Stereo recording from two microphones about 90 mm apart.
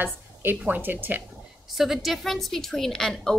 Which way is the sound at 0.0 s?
20° right (ahead or behind).